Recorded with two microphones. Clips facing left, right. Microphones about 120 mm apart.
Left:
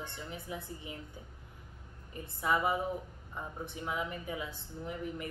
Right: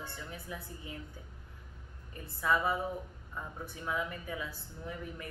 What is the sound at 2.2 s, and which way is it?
Speech, 20° left (ahead or behind).